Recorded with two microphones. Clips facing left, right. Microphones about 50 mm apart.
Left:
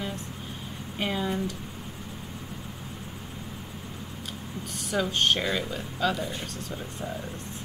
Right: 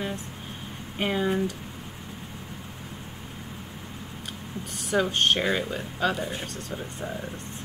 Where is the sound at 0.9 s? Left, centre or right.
Centre.